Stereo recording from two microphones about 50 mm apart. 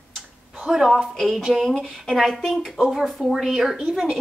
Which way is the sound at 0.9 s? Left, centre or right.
Centre.